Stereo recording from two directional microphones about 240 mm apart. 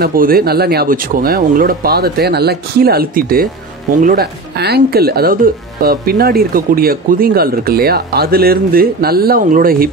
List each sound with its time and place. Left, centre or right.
0.0 s speech: right